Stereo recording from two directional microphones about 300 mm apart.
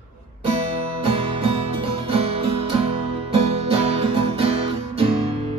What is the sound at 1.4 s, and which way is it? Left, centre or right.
Music, centre.